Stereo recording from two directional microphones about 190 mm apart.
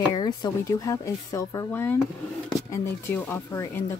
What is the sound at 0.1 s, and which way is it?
A woman's voice, 20° left (ahead or behind).